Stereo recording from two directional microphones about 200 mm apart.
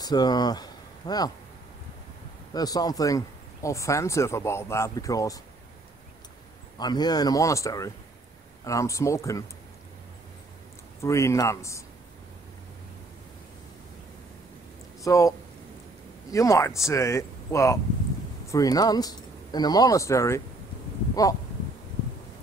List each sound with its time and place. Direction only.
0.0 s speech: 20° left (ahead or behind)
2.5 s speech: 20° left (ahead or behind)
6.8 s speech: 20° left (ahead or behind)
11.0 s speech: 15° left (ahead or behind)
15.0 s speech: 15° left (ahead or behind)
21.1 s a sound: 20° left (ahead or behind)